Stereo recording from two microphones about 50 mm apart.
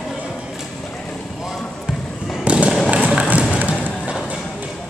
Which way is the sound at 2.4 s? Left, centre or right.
Right.